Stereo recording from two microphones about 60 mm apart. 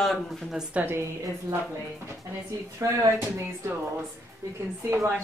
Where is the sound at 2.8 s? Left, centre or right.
Right.